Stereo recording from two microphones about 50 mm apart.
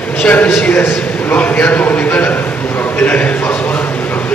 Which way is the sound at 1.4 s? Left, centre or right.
Left.